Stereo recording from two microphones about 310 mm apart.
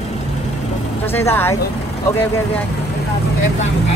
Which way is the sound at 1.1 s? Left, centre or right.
Centre.